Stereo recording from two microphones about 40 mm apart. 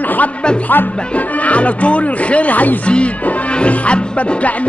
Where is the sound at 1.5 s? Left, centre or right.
Left.